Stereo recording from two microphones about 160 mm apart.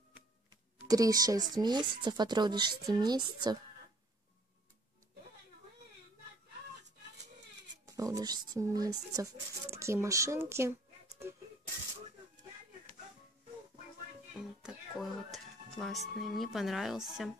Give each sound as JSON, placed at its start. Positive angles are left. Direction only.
{"t": 0.8, "sound": "speech", "side_deg": -20}
{"t": 7.8, "sound": "speech", "side_deg": -20}
{"t": 14.3, "sound": "a woman's voice", "side_deg": -5}